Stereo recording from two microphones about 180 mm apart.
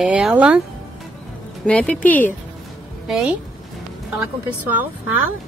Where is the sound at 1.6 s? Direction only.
5° left (ahead or behind).